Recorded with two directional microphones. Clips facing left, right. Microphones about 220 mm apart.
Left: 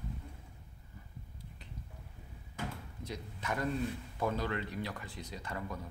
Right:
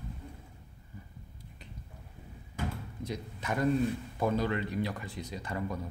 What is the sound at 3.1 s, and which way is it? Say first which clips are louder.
A man's voice: right 3 dB; 15° right (ahead or behind).